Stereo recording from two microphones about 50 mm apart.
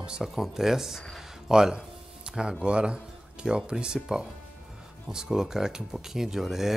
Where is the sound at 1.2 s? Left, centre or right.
Centre.